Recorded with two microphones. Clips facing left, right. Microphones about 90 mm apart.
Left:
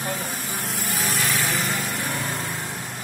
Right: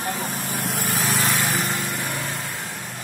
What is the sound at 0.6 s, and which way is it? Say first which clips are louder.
Light engine: right 5 dB; 90° right.